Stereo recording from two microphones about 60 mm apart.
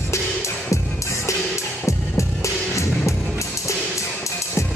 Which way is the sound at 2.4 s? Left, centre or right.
Left.